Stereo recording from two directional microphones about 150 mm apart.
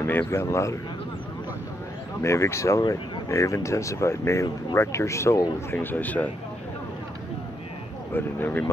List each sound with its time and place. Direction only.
0.0 s speech: 15° left (ahead or behind)
2.2 s speech: 20° left (ahead or behind)
8.1 s speech: 15° left (ahead or behind)